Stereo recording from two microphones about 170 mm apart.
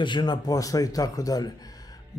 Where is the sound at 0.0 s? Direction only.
25° left (ahead or behind).